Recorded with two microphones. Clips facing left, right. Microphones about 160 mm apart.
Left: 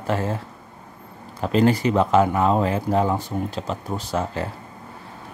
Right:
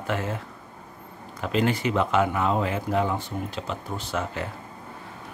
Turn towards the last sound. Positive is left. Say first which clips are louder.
# left 4 dB
turn(degrees=35)  # may be behind; listen again after turning